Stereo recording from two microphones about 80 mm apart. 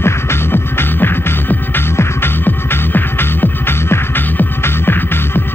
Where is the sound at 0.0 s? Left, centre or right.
Left.